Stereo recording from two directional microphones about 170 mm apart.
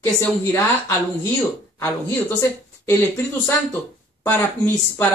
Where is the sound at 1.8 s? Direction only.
15° left (ahead or behind).